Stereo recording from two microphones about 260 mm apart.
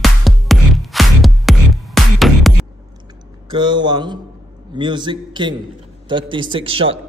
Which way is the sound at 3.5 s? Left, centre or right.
Centre.